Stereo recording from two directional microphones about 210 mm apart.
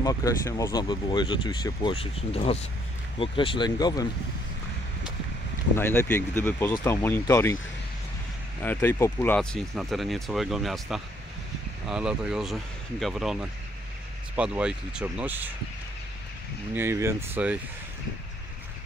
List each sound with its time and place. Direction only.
0.0 s speech: 15° left (ahead or behind)
5.8 s speech: 10° left (ahead or behind)
8.6 s speech: 10° left (ahead or behind); by 15.5 s 10° right (ahead or behind)
16.7 s speech: 10° right (ahead or behind)